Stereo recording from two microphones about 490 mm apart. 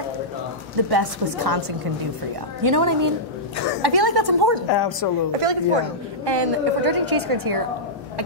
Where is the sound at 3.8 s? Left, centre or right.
Right.